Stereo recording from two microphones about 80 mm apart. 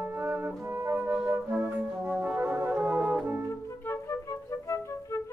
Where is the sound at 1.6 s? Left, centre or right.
Right.